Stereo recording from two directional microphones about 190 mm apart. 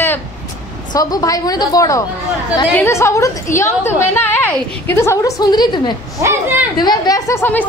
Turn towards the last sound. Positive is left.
turn(degrees=10)  # may be behind; listen again after turning